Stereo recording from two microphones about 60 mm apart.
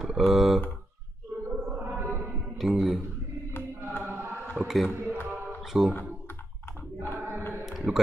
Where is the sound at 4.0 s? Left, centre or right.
Right.